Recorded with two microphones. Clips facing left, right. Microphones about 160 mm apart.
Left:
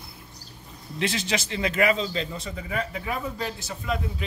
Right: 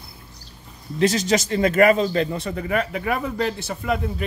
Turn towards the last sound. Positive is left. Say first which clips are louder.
# right 5 dB
turn(degrees=-60)  # may be behind; listen again after turning